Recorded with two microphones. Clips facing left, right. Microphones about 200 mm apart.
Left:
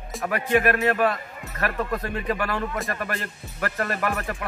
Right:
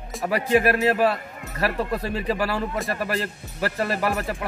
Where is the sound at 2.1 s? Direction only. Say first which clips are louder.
Right 2 dB; 30° right (ahead or behind).